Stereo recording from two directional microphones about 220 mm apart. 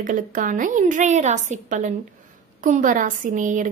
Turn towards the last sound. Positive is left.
turn(degrees=-35)  # may be behind; listen again after turning